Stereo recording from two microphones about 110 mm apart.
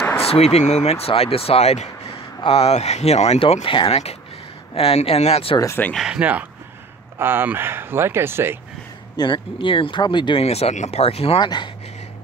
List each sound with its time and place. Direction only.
0.2 s speech: 70° left (ahead or behind)
3.3 s speech: 60° left (ahead or behind)
3.9 s speech: 70° left (ahead or behind)
5.9 s speech: 10° right (ahead or behind)
9.1 s speech: 45° left (ahead or behind)
10.4 s speech: 75° left (ahead or behind)
11.4 s speech: 40° left (ahead or behind)